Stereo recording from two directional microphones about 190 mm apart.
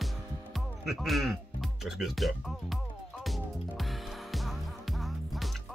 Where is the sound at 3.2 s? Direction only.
Centre (ahead or behind).